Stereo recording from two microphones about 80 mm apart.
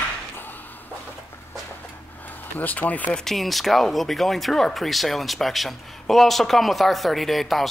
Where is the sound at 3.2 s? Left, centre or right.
Centre.